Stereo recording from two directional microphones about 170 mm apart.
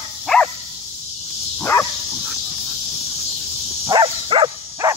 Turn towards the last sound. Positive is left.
turn(degrees=-30)  # may be behind; listen again after turning